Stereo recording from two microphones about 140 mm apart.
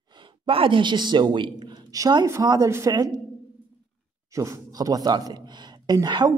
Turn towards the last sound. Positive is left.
turn(degrees=-30)  # may be behind; listen again after turning